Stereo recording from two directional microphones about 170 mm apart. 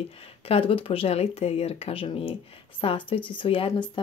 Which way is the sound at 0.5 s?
30° left (ahead or behind).